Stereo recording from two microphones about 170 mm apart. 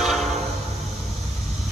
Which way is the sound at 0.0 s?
Centre (ahead or behind).